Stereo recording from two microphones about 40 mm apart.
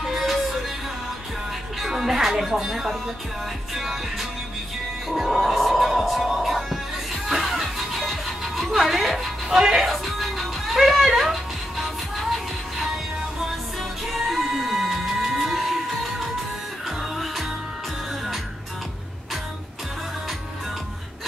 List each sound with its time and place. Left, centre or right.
0.0 s music: centre
1.8 s speech: centre
3.7 s music: centre
5.1 s speech: centre
6.2 s music: centre
9.6 s speech: centre
9.8 s music: centre
14.1 s music: centre
16.8 s music: centre